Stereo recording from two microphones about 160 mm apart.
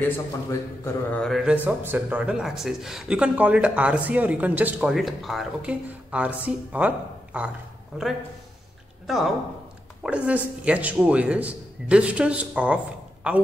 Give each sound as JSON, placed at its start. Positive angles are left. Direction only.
{"t": 0.0, "sound": "a man's voice", "side_deg": 15}
{"t": 1.2, "sound": "speech", "side_deg": 0}
{"t": 7.9, "sound": "speech", "side_deg": -5}